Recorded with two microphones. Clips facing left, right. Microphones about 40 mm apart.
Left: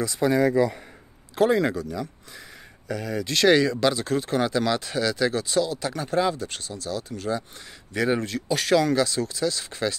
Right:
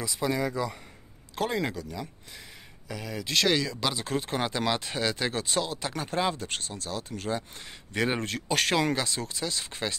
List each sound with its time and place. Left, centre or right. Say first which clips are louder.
0.2 s speech: left 8 dB; centre
3.9 s speech: left 5 dB; centre; by 8.7 s right
8.7 s speech: left 6 dB; right